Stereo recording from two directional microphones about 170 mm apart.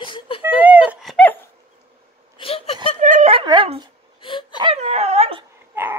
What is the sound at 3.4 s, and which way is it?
Dog, 30° right (ahead or behind).